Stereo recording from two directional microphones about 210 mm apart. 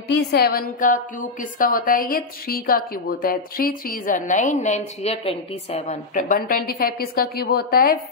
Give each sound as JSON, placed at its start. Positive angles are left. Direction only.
{"t": 0.1, "sound": "a woman's voice", "side_deg": 50}